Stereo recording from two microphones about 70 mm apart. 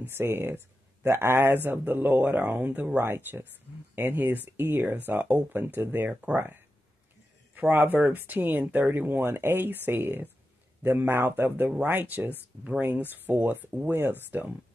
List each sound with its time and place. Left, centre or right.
0.0 s a man's voice: right
7.5 s a man's voice: right